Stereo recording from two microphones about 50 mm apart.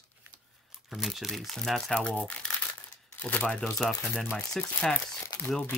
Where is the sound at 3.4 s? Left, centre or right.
Left.